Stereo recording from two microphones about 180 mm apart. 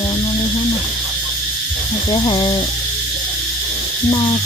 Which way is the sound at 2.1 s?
25° left (ahead or behind).